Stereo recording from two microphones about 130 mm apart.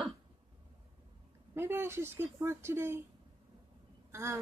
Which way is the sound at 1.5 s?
20° right (ahead or behind).